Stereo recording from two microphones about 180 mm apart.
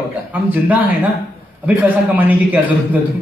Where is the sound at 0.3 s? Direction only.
10° right (ahead or behind).